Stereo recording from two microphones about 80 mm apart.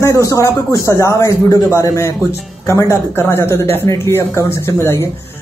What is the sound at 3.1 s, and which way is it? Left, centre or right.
Speech, left.